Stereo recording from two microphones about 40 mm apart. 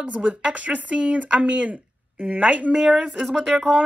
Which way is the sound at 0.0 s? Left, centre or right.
Right.